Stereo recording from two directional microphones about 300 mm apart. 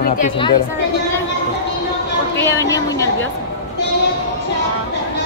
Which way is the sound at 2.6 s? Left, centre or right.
Centre.